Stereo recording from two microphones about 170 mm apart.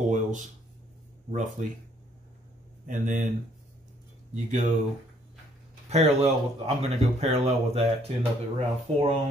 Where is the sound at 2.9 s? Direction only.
50° right (ahead or behind).